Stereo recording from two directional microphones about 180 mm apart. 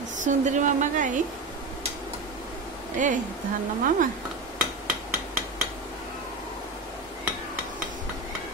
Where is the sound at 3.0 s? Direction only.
45° right (ahead or behind).